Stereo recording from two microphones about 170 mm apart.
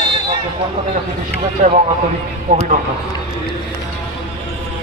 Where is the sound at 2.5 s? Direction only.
50° right (ahead or behind).